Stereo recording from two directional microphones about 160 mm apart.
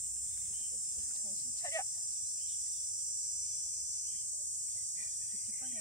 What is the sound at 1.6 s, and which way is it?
Cricket, 20° left (ahead or behind).